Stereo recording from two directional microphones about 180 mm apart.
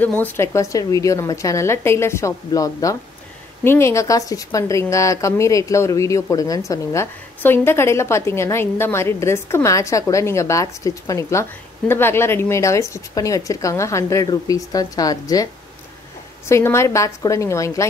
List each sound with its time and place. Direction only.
0.0 s a woman's voice: 10° left (ahead or behind)
16.4 s a woman's voice: 15° left (ahead or behind)